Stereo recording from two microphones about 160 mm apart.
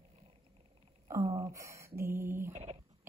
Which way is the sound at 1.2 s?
30° right (ahead or behind).